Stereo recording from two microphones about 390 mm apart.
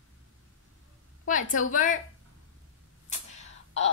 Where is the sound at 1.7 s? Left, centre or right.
Centre.